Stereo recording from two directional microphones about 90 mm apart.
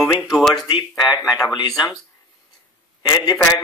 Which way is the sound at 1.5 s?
55° left (ahead or behind).